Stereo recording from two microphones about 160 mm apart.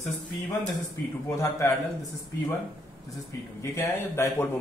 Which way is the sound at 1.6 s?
15° left (ahead or behind).